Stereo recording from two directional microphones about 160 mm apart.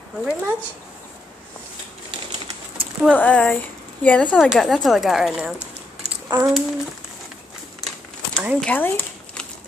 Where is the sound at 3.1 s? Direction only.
5° left (ahead or behind).